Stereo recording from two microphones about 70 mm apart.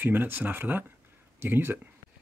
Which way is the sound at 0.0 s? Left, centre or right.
Right.